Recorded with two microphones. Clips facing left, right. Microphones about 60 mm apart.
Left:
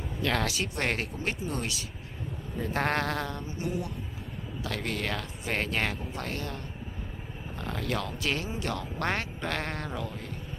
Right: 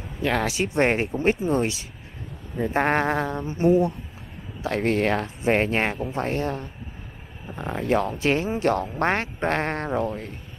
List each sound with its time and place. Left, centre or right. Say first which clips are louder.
0.2 s speech: right 6 dB; centre
0.7 s speech: right 9 dB; right
3.4 s speech: right 14 dB; right